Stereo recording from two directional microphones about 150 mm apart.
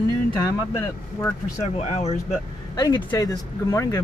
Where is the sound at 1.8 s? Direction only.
45° left (ahead or behind).